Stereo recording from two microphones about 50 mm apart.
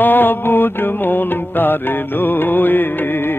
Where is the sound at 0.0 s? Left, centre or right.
Left.